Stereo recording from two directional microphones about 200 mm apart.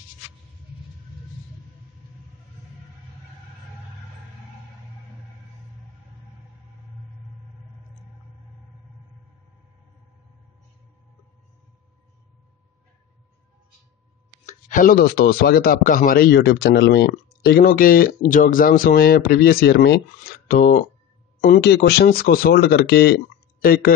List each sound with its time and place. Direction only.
14.4 s speech: 40° left (ahead or behind)